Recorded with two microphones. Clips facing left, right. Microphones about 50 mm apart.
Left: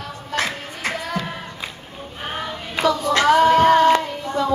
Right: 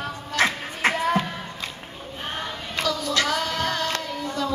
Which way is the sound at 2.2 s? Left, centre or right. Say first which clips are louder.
Left 3 dB; centre.